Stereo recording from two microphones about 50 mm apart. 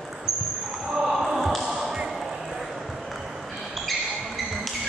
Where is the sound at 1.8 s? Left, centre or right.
Centre.